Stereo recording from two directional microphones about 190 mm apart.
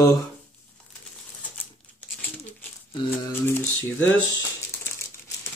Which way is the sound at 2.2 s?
10° left (ahead or behind).